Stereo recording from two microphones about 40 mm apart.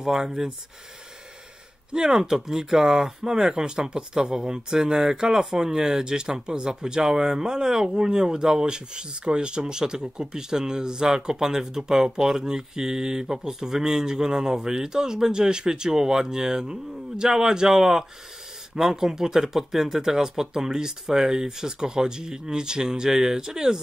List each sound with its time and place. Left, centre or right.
0.0 s speech: centre
1.9 s speech: centre